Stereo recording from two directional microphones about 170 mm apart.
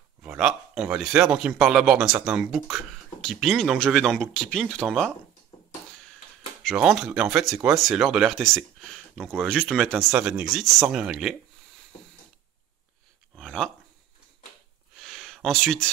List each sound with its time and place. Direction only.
0.2 s speech: 5° right (ahead or behind)
6.6 s speech: centre (ahead or behind)
13.4 s dog: 5° left (ahead or behind)
15.0 s a sound: centre (ahead or behind)